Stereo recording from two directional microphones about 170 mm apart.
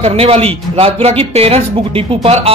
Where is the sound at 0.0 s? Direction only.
35° right (ahead or behind).